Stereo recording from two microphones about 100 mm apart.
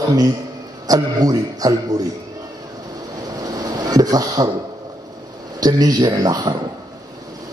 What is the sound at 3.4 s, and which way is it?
Music, 40° right (ahead or behind).